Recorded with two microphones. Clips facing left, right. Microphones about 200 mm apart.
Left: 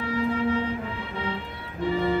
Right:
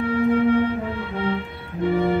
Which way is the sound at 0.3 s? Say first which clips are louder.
Right 9 dB; 60° right (ahead or behind).